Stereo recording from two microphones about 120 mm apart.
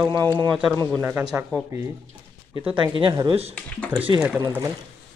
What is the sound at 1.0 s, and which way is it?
Speech, 20° right (ahead or behind).